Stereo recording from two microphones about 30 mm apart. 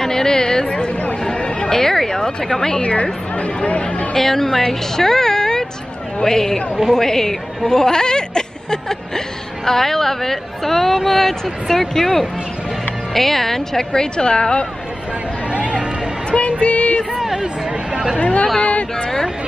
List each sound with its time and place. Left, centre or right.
0.0 s a sound: centre
1.2 s chatter: left
1.7 s a sound: centre
2.8 s speech: left
4.1 s a woman's voice: centre
14.1 s speech: left
16.3 s music: left
17.2 s a sound: centre
17.9 s speech: right
18.2 s speech: left